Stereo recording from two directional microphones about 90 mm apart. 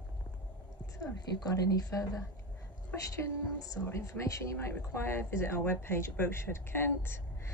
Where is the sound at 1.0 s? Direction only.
45° left (ahead or behind).